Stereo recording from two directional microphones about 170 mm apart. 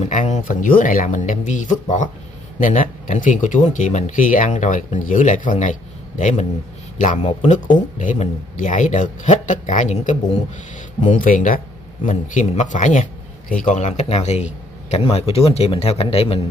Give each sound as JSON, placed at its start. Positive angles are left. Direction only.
{"t": 0.0, "sound": "speech", "side_deg": 45}